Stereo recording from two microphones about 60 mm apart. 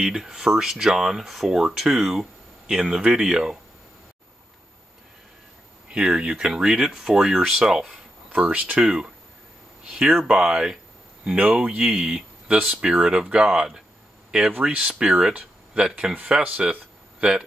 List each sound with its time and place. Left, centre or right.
0.0 s speech: centre
5.9 s speech: centre
8.3 s speech: right
8.8 s speech: centre